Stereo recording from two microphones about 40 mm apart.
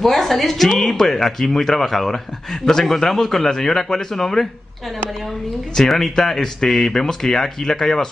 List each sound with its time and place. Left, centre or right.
0.0 s speech: centre
5.8 s speech: centre